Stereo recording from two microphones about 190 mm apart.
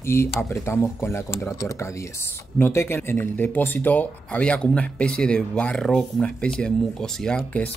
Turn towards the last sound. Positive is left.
turn(degrees=5)  # may be behind; listen again after turning